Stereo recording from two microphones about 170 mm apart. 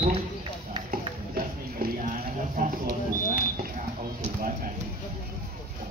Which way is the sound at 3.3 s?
60° right (ahead or behind).